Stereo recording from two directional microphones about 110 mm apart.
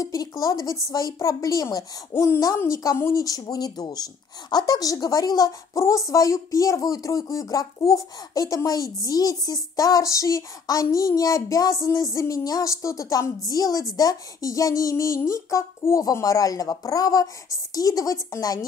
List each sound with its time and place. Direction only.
0.0 s speech: 35° left (ahead or behind)